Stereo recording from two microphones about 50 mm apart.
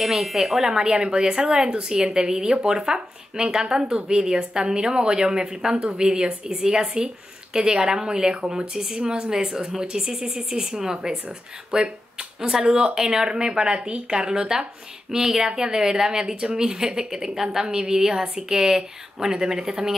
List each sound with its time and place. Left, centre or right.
0.0 s speech: centre